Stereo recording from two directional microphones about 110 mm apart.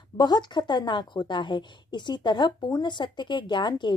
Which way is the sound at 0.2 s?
40° left (ahead or behind).